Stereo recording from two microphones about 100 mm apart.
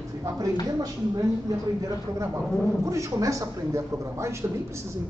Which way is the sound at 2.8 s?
30° right (ahead or behind).